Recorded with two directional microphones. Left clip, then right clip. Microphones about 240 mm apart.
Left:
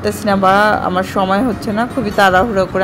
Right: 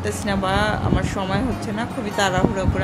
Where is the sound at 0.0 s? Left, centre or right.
Centre.